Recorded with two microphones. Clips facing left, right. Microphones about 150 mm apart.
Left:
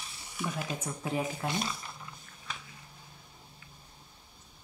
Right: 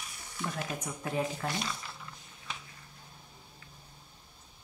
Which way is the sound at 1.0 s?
10° left (ahead or behind).